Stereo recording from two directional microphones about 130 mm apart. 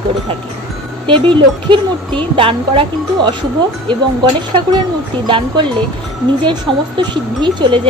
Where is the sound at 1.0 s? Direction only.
40° right (ahead or behind).